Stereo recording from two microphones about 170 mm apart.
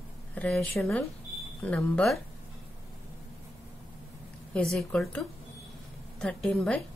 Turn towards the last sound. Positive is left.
turn(degrees=5)  # may be behind; listen again after turning